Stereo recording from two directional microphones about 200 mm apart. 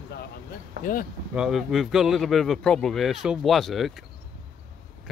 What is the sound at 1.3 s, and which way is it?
A man's voice, centre (ahead or behind).